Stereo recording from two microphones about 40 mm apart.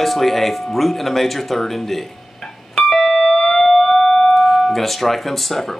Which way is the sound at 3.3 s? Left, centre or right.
Centre.